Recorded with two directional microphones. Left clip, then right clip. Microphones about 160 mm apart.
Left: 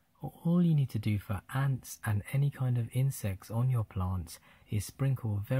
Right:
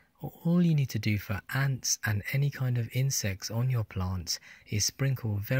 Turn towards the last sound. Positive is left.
turn(degrees=-10)  # may be behind; listen again after turning